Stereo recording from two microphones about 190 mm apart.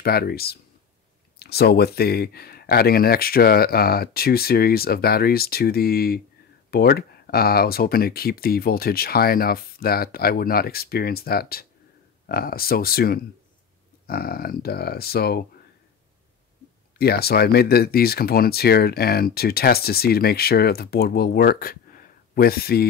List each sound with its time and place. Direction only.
0.0 s speech: 55° left (ahead or behind)
17.0 s speech: 55° left (ahead or behind)